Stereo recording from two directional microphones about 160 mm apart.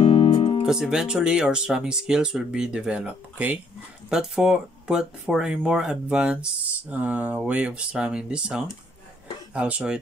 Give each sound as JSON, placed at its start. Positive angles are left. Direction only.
{"t": 0.0, "sound": "music", "side_deg": 35}
{"t": 0.7, "sound": "speech", "side_deg": -5}